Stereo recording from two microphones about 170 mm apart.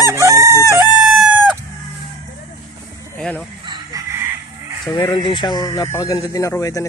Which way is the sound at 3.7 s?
20° right (ahead or behind).